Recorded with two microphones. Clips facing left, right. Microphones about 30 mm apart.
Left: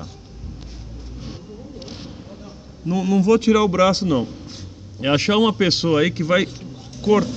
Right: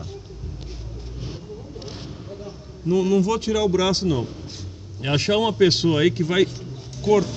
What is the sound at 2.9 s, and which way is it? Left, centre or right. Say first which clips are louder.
Speech: right 1 dB; left.